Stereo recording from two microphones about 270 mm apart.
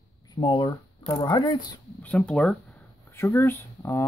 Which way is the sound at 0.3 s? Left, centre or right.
Centre.